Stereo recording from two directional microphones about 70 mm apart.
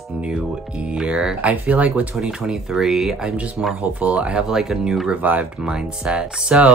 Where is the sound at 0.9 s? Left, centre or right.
Centre.